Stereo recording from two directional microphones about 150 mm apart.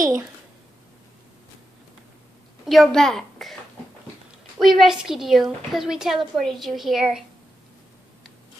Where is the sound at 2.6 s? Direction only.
Centre (ahead or behind).